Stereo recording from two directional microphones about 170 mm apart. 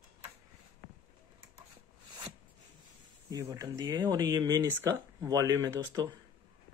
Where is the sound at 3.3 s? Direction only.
20° right (ahead or behind).